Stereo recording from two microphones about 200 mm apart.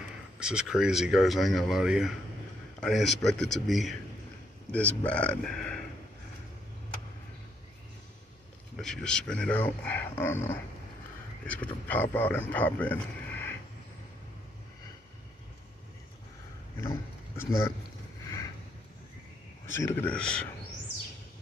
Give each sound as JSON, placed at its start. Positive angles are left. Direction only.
{"t": 0.4, "sound": "speech", "side_deg": -5}
{"t": 8.7, "sound": "speech", "side_deg": 0}
{"t": 16.8, "sound": "a sound", "side_deg": 15}
{"t": 19.7, "sound": "speech", "side_deg": 10}